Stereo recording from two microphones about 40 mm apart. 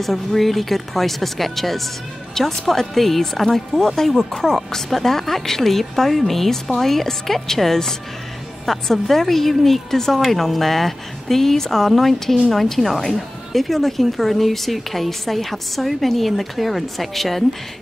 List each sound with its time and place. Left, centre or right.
0.0 s speech: centre